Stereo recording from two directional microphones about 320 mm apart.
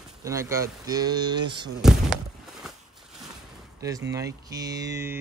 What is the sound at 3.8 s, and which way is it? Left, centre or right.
Speech, centre.